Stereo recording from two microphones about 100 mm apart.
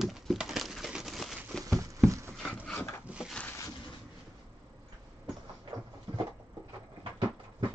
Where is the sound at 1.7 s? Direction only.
30° right (ahead or behind).